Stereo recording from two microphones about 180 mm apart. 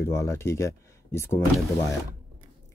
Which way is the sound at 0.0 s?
15° left (ahead or behind).